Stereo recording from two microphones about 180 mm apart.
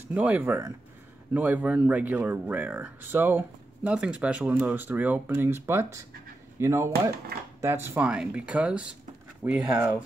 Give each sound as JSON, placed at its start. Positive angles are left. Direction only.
{"t": 0.1, "sound": "speech", "side_deg": -10}